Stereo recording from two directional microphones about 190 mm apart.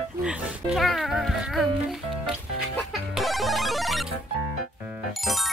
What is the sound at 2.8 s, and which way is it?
Music, centre (ahead or behind).